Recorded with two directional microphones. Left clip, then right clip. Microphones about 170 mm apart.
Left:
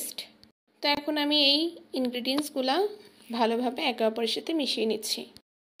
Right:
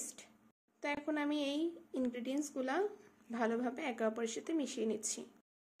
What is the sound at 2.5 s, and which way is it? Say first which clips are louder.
Speech: left 10 dB; 10° left (ahead or behind).